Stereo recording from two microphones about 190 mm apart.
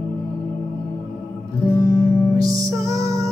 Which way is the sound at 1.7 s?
15° left (ahead or behind).